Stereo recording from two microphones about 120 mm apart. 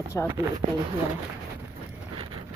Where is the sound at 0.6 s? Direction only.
90° right.